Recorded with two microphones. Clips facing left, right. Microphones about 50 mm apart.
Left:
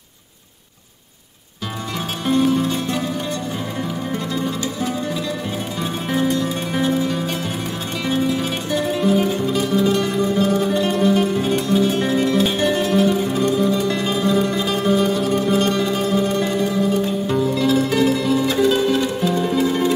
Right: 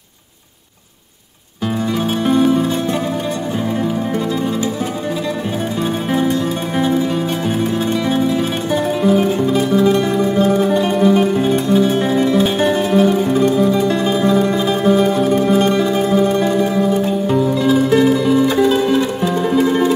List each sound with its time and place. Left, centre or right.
2.2 s music: centre
6.8 s music: centre
8.7 s music: centre
9.2 s music: right
11.2 s music: right
11.5 s music: centre